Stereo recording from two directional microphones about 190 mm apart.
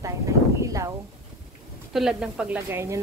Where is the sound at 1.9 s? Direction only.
5° right (ahead or behind).